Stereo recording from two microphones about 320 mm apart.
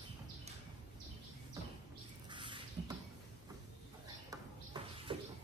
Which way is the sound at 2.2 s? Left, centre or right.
Centre.